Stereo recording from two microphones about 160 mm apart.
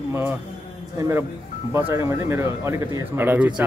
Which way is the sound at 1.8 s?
15° right (ahead or behind).